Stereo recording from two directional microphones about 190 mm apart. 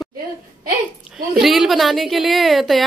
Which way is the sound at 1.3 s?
Centre (ahead or behind).